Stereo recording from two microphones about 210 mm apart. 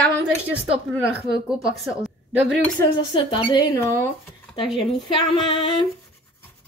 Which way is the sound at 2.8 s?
20° left (ahead or behind).